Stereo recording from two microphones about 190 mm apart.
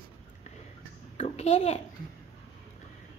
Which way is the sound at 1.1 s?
35° left (ahead or behind).